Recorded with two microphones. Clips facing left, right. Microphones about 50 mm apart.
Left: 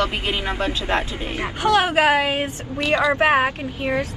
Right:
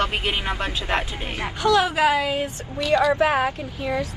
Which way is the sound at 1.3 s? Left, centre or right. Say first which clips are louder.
Left 1 dB; left.